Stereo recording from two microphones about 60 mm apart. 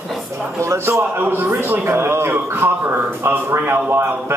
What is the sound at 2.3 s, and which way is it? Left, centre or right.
A man's voice, right.